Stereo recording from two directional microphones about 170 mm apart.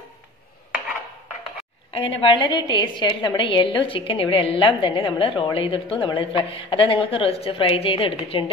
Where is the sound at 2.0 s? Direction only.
30° left (ahead or behind).